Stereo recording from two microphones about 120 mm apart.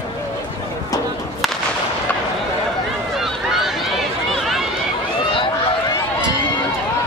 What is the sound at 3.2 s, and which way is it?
Run, centre (ahead or behind).